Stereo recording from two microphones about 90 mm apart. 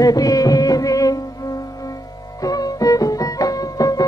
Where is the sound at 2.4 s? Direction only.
45° left (ahead or behind).